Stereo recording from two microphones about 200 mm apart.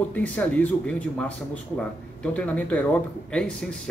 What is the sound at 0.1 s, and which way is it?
Speech, 10° left (ahead or behind).